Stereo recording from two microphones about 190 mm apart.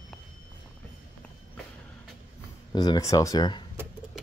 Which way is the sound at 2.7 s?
20° left (ahead or behind).